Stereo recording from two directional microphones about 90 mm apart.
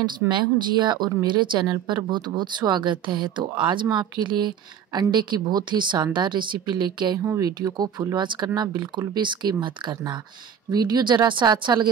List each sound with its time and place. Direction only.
0.3 s speech: 60° right (ahead or behind)
7.3 s speech: 45° right (ahead or behind)